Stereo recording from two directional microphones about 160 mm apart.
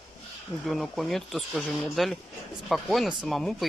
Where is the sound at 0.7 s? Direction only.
Centre (ahead or behind).